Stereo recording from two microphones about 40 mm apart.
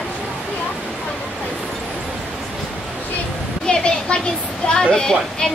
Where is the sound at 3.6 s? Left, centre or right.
Left.